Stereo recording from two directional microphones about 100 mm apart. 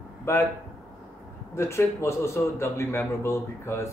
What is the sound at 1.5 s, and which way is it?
A man's voice, 25° left (ahead or behind).